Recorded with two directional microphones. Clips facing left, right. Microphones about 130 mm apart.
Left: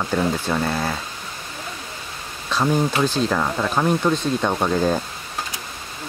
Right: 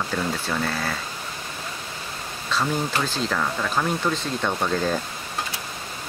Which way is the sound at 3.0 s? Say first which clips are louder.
Left 5 dB; 15° left (ahead or behind).